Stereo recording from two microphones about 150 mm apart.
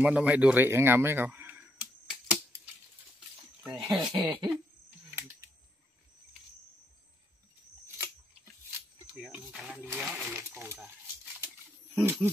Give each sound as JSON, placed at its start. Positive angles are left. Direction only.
{"t": 0.0, "sound": "speech", "side_deg": -10}
{"t": 3.7, "sound": "speech", "side_deg": -30}
{"t": 4.1, "sound": "cough", "side_deg": -30}
{"t": 9.1, "sound": "snake", "side_deg": -5}
{"t": 9.9, "sound": "a sound", "side_deg": -5}
{"t": 11.4, "sound": "wild animals", "side_deg": -15}